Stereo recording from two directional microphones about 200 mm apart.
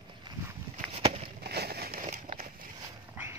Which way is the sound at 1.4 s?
55° right (ahead or behind).